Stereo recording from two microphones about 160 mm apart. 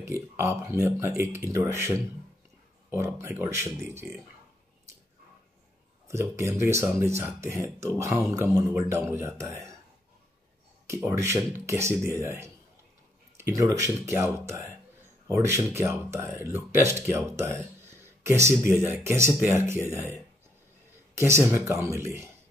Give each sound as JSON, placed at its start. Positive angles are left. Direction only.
{"t": 0.0, "sound": "speech", "side_deg": -15}
{"t": 6.0, "sound": "speech", "side_deg": -15}
{"t": 10.9, "sound": "speech", "side_deg": -15}
{"t": 21.2, "sound": "speech", "side_deg": -15}